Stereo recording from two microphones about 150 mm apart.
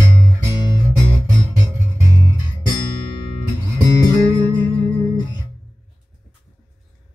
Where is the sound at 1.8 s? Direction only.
20° right (ahead or behind).